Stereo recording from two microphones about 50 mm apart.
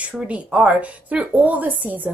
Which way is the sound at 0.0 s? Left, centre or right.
Right.